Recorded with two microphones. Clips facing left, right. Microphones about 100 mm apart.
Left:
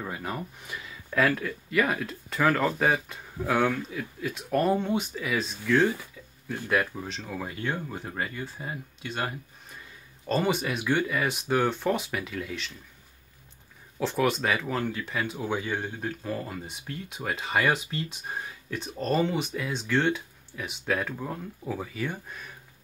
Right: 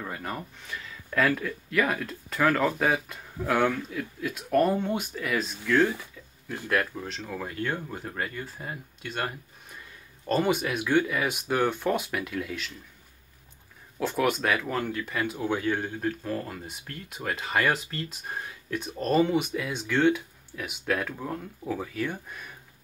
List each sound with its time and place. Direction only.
0.0 s speech: 5° left (ahead or behind)
0.7 s speech: 15° left (ahead or behind)
1.1 s speech: centre (ahead or behind)
13.9 s speech: centre (ahead or behind)